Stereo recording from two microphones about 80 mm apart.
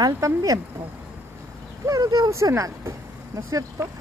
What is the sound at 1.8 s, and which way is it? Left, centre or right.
Speech, right.